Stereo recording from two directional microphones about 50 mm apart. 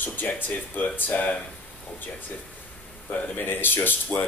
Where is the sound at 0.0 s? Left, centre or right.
Left.